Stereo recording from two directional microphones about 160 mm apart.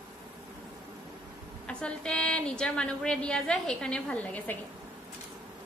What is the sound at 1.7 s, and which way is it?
A woman's voice, 5° left (ahead or behind).